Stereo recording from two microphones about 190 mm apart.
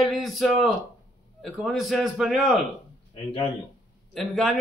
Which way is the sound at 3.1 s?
30° left (ahead or behind).